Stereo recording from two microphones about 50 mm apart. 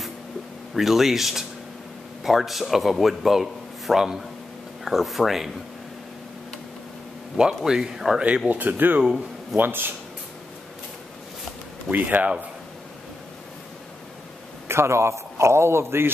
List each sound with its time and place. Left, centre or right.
0.7 s a man's voice: centre
7.3 s speech: centre
8.5 s speech: right
9.0 s speech: centre
9.6 s speech: right
11.9 s speech: right
14.7 s a man's voice: right